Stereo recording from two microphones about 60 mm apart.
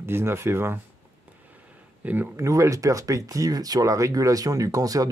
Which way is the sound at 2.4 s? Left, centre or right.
Right.